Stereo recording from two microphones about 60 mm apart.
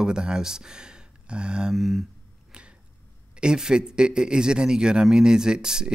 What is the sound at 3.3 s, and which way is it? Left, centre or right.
A man's voice, centre.